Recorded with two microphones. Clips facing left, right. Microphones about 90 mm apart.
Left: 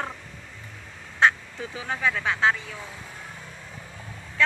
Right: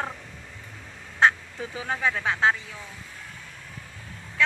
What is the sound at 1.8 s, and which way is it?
Speech, 25° right (ahead or behind).